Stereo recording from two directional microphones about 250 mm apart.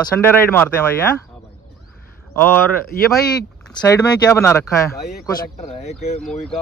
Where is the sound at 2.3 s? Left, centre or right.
Centre.